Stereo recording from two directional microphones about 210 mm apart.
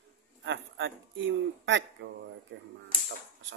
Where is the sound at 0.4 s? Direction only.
60° right (ahead or behind).